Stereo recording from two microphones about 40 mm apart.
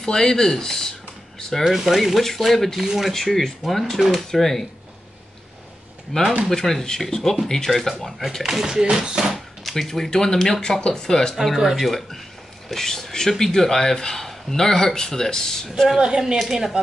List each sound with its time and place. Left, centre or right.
0.0 s speech: centre
1.6 s speech: centre
2.0 s speech: centre
2.8 s speech: centre
3.1 s speech: centre
6.1 s speech: centre
8.5 s speech: centre
9.6 s speech: centre
11.5 s speech: centre
11.8 s speech: centre
16.0 s a woman's voice: right
16.3 s speech: centre